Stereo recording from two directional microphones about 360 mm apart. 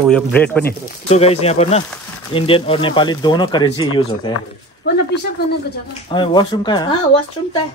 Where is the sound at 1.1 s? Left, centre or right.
Centre.